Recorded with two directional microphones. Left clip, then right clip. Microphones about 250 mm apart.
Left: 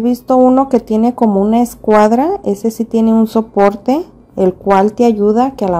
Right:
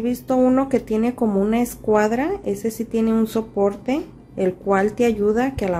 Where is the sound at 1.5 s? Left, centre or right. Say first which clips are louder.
Left 8 dB; centre.